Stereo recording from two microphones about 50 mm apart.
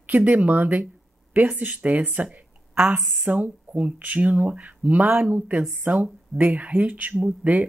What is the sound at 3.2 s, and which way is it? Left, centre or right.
Speech, right.